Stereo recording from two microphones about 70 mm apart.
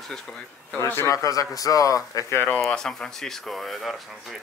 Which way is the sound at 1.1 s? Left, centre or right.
Left.